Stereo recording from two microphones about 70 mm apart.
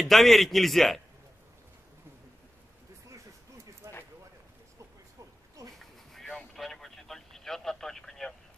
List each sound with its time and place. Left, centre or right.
0.1 s a man's voice: centre
3.8 s a sound: right
5.8 s vehicle: centre